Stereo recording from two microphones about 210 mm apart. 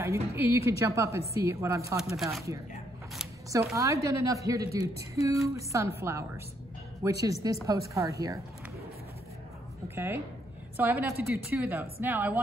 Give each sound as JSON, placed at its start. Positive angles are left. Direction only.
{"t": 0.0, "sound": "a woman's voice", "side_deg": -15}
{"t": 2.0, "sound": "speech", "side_deg": 0}
{"t": 3.7, "sound": "a woman's voice", "side_deg": -15}
{"t": 4.6, "sound": "a woman's voice", "side_deg": 30}
{"t": 5.5, "sound": "a woman's voice", "side_deg": -15}
{"t": 9.8, "sound": "a woman's voice", "side_deg": -10}